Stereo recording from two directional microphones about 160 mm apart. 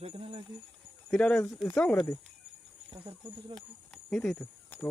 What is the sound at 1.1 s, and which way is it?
Speech, 5° left (ahead or behind).